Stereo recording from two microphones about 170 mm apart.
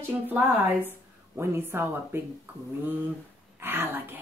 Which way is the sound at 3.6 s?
10° right (ahead or behind).